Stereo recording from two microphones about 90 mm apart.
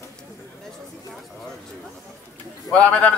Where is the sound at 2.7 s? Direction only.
15° left (ahead or behind).